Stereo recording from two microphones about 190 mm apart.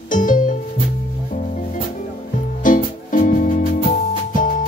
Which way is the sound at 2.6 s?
40° left (ahead or behind).